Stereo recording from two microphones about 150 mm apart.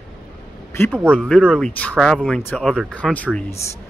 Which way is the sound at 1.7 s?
10° left (ahead or behind).